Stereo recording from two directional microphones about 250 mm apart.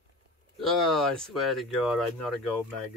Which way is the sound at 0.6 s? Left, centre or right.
Centre.